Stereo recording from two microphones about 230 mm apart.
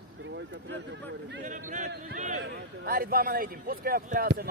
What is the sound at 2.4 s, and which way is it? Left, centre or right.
A man's voice, right.